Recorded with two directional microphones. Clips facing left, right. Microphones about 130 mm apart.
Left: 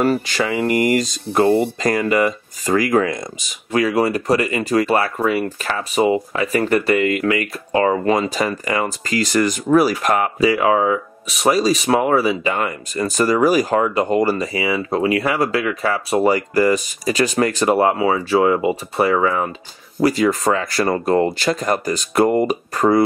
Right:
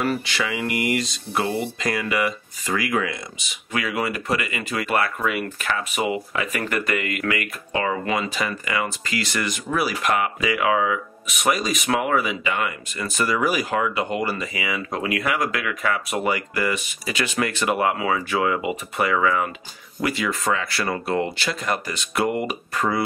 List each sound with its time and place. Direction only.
0.0 s speech: 40° left (ahead or behind)